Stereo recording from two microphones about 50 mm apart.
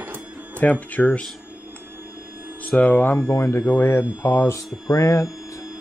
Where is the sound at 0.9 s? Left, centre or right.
Left.